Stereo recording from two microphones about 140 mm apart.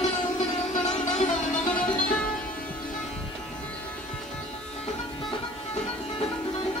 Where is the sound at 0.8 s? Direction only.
60° left (ahead or behind).